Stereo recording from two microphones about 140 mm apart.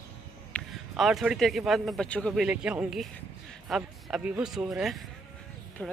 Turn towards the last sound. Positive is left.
turn(degrees=5)  # may be behind; listen again after turning